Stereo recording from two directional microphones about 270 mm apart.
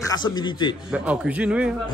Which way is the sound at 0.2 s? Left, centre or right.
Centre.